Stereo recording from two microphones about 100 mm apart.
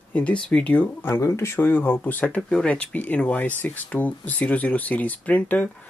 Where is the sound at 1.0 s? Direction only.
30° left (ahead or behind).